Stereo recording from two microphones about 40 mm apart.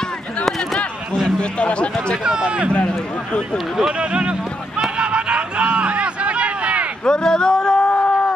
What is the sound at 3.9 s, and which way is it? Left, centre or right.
Speech, right.